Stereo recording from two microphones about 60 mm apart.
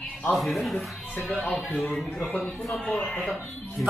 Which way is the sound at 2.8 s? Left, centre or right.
Centre.